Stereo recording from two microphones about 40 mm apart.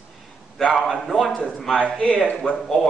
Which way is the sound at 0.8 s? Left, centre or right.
Centre.